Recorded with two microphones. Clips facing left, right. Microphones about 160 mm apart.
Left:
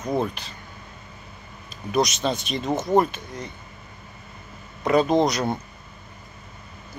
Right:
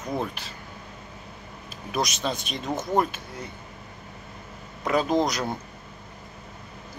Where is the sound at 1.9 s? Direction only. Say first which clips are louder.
Left 5 dB; centre (ahead or behind).